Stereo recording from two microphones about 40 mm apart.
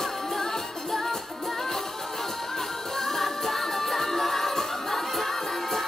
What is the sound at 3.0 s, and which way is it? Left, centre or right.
Music, centre.